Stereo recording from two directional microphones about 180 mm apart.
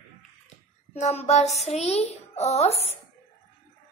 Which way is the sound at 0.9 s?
35° left (ahead or behind).